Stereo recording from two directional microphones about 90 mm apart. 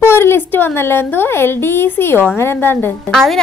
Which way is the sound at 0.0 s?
25° left (ahead or behind).